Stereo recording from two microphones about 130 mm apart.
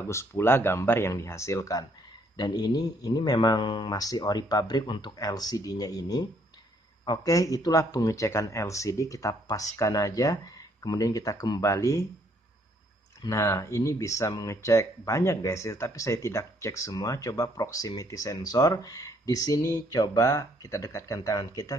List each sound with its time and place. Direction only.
0.1 s speech: 20° left (ahead or behind)
13.2 s speech: 25° left (ahead or behind)